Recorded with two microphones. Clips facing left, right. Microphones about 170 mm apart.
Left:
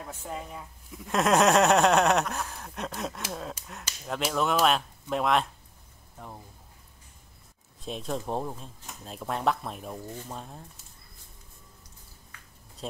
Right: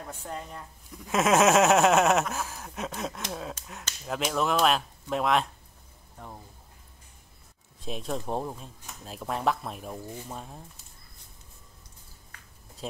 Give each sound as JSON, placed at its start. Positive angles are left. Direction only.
{"t": 0.0, "sound": "speech", "side_deg": 5}
{"t": 7.8, "sound": "speech", "side_deg": 0}